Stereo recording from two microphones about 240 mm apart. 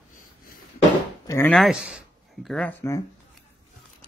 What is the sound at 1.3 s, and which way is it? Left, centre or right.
Speech, centre.